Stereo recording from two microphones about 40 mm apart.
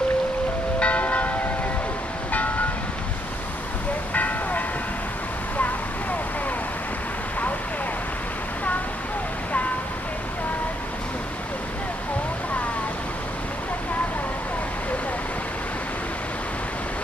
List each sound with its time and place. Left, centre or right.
0.7 s church bell: left
4.1 s vehicle: left